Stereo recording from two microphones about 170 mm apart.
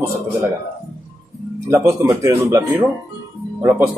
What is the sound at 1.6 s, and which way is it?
Speech, 15° right (ahead or behind).